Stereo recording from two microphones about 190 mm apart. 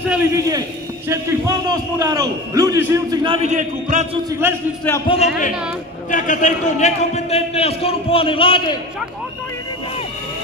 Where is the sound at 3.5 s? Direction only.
40° right (ahead or behind).